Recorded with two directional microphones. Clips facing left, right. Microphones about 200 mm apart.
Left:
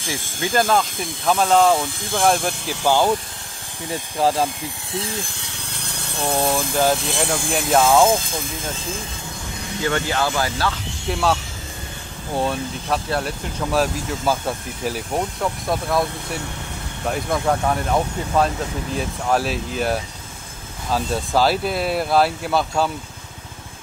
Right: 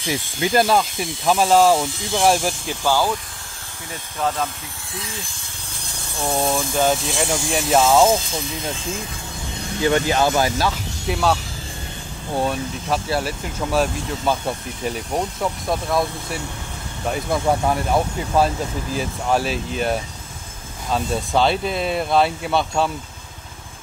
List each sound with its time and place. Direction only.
0.0 s speech: 50° left (ahead or behind)
1.2 s speech: 5° right (ahead or behind)
1.9 s speech: 55° left (ahead or behind)
2.1 s speech: 5° right (ahead or behind)
2.8 s speech: 20° left (ahead or behind)
3.9 s speech: 30° left (ahead or behind)
6.2 s speech: 5° left (ahead or behind)
7.3 s speech: 55° left (ahead or behind)
7.7 s speech: centre (ahead or behind)
8.2 s speech: 50° left (ahead or behind)
9.8 s speech: 15° right (ahead or behind)
11.1 s speech: centre (ahead or behind)
12.4 s speech: centre (ahead or behind)